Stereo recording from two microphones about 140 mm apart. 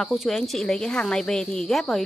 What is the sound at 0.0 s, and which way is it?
A woman's voice, centre (ahead or behind).